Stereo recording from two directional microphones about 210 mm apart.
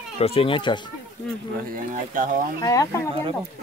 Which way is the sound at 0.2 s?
25° left (ahead or behind).